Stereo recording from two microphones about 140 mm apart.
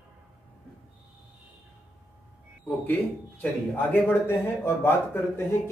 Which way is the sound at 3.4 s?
10° left (ahead or behind).